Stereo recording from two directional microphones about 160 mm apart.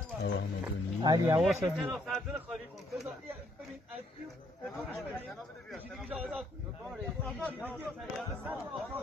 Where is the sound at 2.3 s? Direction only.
5° right (ahead or behind).